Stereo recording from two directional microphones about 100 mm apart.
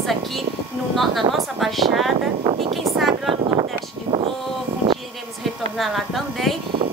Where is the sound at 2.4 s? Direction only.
65° right (ahead or behind).